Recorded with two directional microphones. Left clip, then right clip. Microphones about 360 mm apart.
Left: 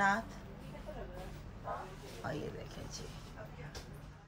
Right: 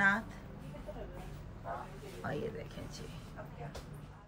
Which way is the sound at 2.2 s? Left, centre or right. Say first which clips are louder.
Right 2 dB; centre.